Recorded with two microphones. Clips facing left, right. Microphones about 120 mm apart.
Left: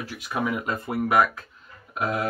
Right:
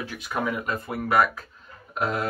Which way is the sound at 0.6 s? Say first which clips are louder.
Left 1 dB; 25° left (ahead or behind).